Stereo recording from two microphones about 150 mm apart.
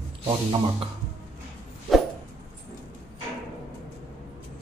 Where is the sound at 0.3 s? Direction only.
35° right (ahead or behind).